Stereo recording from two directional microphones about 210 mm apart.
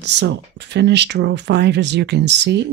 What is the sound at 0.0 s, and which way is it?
Speech, 55° right (ahead or behind).